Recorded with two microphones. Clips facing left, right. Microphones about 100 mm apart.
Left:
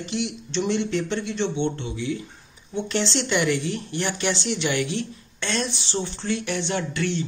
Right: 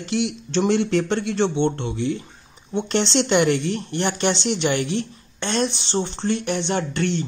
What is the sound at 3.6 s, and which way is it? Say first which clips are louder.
A woman's voice: right 4 dB; 60° right (ahead or behind).